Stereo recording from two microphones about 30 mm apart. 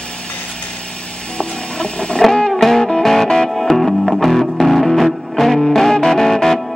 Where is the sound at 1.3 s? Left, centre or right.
Left.